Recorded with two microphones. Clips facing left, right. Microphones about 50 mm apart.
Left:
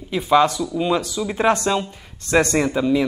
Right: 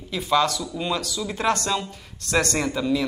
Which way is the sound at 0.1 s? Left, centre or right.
Left.